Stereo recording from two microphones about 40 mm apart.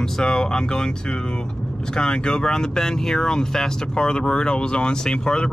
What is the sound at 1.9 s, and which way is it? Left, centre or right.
Speech, left.